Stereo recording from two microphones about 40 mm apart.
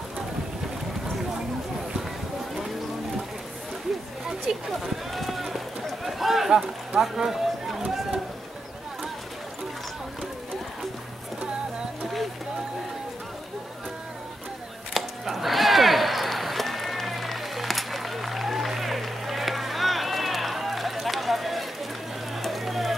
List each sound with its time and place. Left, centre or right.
4.5 s speech: centre
5.1 s run: centre
15.0 s chop: centre
22.4 s a sound: centre